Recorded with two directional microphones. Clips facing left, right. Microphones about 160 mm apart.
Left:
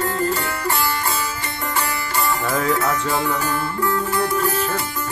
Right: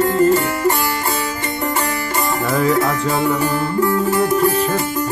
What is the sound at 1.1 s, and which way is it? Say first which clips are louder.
Music: right 4 dB; 40° right (ahead or behind).